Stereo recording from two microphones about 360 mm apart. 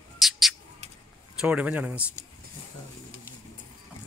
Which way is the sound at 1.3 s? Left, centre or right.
Centre.